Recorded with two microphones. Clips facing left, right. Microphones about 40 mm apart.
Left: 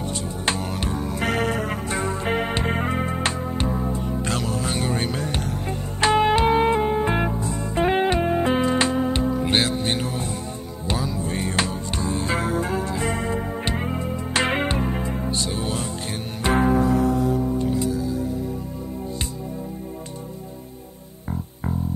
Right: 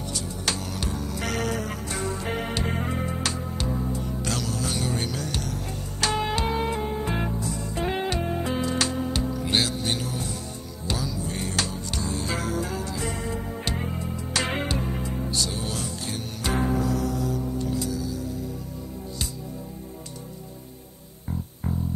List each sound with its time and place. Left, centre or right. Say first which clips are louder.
0.1 s music: left 3 dB; left